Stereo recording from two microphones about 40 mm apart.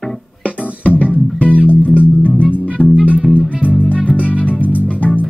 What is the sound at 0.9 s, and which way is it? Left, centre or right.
Music, left.